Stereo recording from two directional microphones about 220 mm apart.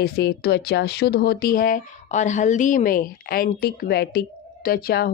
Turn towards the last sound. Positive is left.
turn(degrees=45)  # may be behind; listen again after turning